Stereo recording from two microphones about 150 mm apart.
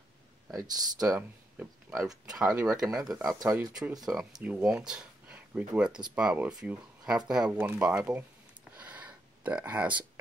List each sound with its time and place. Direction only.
0.6 s speech: 25° right (ahead or behind)
1.6 s a sound: 15° right (ahead or behind)
2.4 s speech: 20° right (ahead or behind)
2.7 s speech: 5° right (ahead or behind)
3.3 s speech: 20° right (ahead or behind)
4.0 s speech: 5° right (ahead or behind)
8.7 s a sound: 10° right (ahead or behind)